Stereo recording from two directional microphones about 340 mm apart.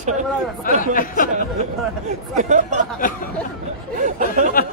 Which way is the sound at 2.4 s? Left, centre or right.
Right.